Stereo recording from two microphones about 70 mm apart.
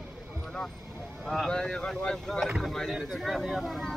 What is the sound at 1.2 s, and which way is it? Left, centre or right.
Speech, centre.